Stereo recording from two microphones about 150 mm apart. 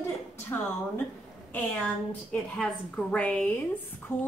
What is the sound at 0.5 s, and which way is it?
Speech, 20° left (ahead or behind).